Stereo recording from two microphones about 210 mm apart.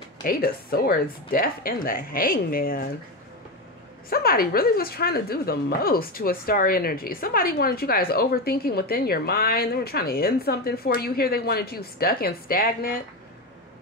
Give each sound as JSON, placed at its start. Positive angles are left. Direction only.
{"t": 0.2, "sound": "a woman's voice", "side_deg": 45}
{"t": 4.1, "sound": "a woman's voice", "side_deg": 45}